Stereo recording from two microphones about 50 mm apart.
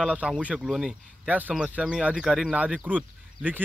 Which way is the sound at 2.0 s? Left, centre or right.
Centre.